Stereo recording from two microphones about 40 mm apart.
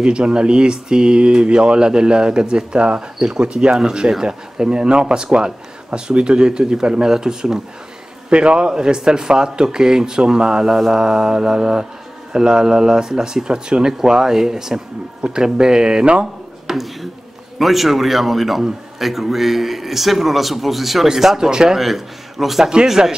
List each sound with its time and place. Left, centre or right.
0.0 s speech: right
16.6 s speech: centre
21.7 s speech: centre